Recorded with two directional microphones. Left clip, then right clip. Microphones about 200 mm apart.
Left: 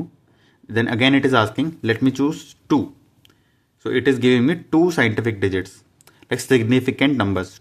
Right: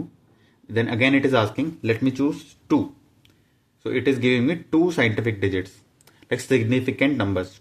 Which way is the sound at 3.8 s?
25° left (ahead or behind).